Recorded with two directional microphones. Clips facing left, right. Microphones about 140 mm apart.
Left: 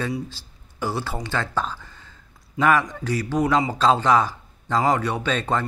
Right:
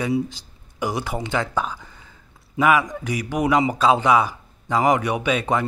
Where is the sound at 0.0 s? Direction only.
15° right (ahead or behind).